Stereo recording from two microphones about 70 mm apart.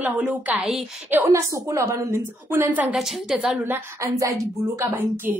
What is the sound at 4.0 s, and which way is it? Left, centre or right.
Speech, right.